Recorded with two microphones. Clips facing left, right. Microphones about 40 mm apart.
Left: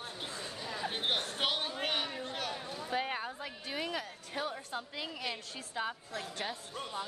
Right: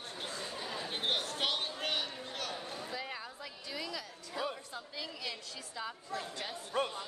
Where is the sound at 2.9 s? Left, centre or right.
Left.